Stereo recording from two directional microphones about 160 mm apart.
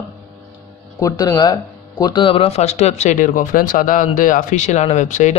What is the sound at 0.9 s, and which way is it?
Speech, 20° left (ahead or behind).